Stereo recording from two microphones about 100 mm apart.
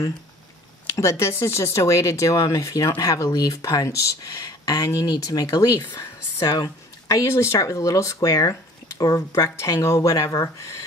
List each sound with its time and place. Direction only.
0.8 s speech: 30° left (ahead or behind)